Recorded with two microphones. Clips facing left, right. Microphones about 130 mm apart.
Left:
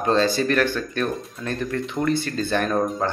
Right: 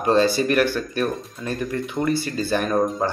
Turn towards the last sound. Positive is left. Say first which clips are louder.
# right 1 dB
turn(degrees=-10)  # may be behind; listen again after turning